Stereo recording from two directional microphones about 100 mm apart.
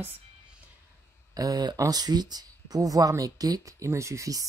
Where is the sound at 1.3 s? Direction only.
40° right (ahead or behind).